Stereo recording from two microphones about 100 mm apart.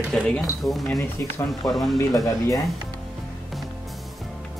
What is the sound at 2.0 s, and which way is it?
Speech, 35° left (ahead or behind).